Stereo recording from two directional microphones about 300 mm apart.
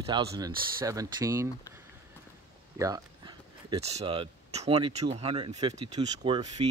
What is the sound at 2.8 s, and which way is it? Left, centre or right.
Speech, centre.